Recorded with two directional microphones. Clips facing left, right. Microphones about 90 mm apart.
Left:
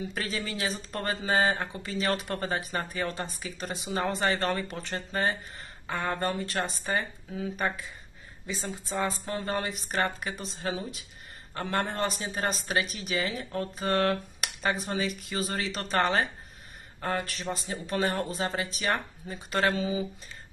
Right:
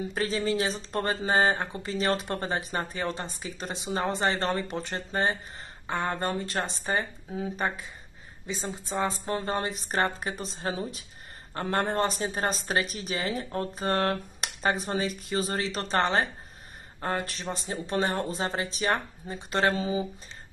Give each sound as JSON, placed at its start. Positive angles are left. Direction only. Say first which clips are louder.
{"t": 0.1, "sound": "speech", "louder": "right 6 dB", "side_deg": -30}